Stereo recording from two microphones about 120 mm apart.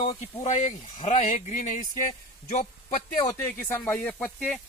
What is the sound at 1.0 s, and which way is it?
Speech, 80° left.